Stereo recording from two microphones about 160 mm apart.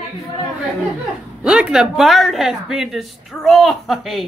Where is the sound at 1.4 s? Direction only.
5° right (ahead or behind).